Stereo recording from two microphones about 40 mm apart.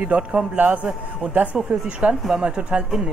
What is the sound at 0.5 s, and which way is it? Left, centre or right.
Speech, right.